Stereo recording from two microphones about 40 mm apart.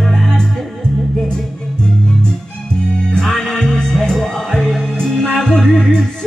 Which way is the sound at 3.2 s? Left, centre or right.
Centre.